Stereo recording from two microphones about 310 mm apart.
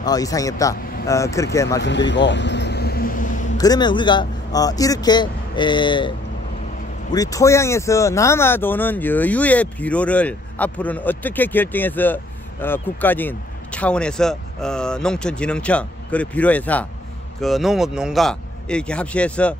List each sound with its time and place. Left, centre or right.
0.0 s speech: centre
1.8 s a sound: left
3.5 s speech: centre